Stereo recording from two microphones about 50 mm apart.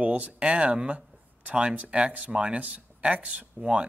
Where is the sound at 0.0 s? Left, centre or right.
Right.